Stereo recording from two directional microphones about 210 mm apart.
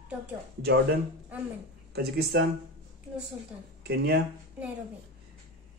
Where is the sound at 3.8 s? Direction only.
50° right (ahead or behind).